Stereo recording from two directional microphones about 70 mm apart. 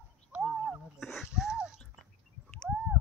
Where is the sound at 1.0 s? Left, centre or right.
Centre.